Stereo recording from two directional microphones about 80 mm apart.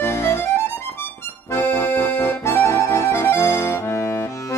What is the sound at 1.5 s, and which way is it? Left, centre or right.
Accordion, left.